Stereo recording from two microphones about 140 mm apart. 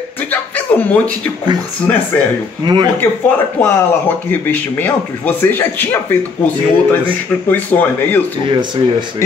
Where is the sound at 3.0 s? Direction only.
15° left (ahead or behind).